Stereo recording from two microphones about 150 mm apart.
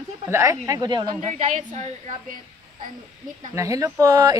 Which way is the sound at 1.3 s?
55° right (ahead or behind).